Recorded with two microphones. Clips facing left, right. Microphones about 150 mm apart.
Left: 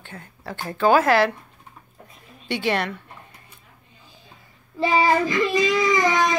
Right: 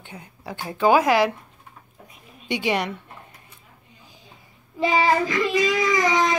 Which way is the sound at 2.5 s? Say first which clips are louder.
Even; 15° right (ahead or behind).